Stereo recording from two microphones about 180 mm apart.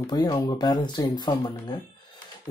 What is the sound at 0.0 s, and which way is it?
Speech, 25° left (ahead or behind).